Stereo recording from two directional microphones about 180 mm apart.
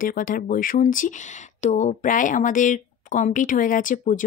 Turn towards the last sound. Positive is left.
turn(degrees=45)  # may be behind; listen again after turning